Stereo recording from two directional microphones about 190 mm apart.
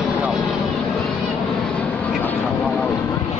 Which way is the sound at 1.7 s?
10° left (ahead or behind).